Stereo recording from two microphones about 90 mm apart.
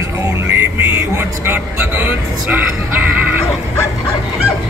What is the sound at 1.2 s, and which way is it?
Music, 25° right (ahead or behind).